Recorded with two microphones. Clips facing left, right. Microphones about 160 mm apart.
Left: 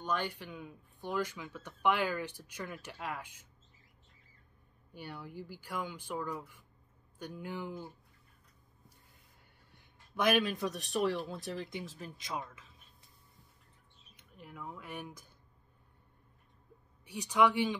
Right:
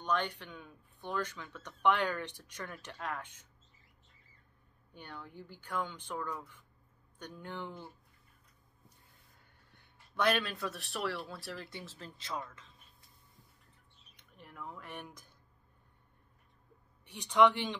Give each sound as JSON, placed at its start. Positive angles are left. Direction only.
{"t": 0.0, "sound": "speech", "side_deg": 5}
{"t": 4.9, "sound": "speech", "side_deg": 10}
{"t": 10.1, "sound": "speech", "side_deg": 15}
{"t": 14.1, "sound": "speech", "side_deg": 5}
{"t": 17.0, "sound": "speech", "side_deg": 5}